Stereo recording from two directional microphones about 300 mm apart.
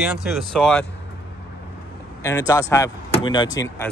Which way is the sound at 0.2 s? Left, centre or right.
Centre.